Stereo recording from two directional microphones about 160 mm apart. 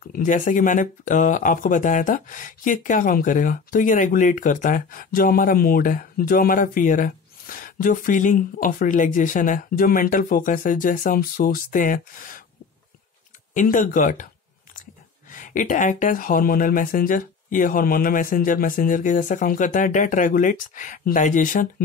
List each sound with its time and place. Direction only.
0.0 s speech: 60° left (ahead or behind)
13.6 s speech: 50° left (ahead or behind)
15.3 s speech: 55° left (ahead or behind)